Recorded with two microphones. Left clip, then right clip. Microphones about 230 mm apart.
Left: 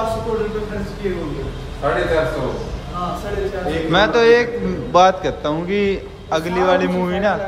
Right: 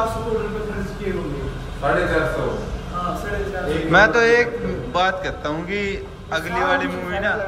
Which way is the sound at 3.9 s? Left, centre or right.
Centre.